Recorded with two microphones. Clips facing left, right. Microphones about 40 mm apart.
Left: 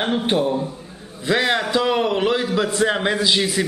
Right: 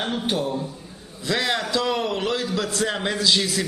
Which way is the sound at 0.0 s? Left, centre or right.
Left.